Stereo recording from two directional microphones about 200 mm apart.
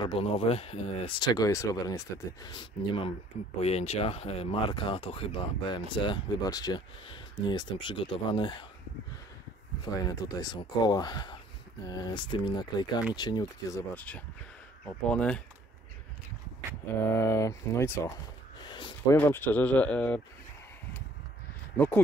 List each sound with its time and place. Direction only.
0.0 s speech: 30° left (ahead or behind)
9.8 s speech: 20° left (ahead or behind)
16.8 s speech: 10° left (ahead or behind)
19.0 s speech: 10° left (ahead or behind)
21.7 s speech: 10° left (ahead or behind)